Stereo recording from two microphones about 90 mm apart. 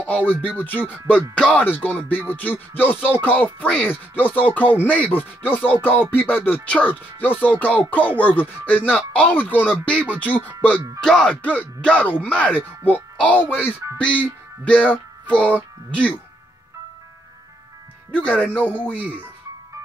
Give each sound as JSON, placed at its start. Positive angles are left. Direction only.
{"t": 0.6, "sound": "speech", "side_deg": 20}
{"t": 11.0, "sound": "speech", "side_deg": 10}
{"t": 18.1, "sound": "speech", "side_deg": 15}
{"t": 18.9, "sound": "speech", "side_deg": -15}